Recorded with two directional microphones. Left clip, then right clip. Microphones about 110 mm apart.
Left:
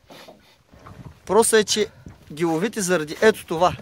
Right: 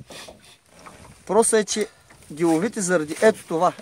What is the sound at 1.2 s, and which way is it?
Speech, centre (ahead or behind).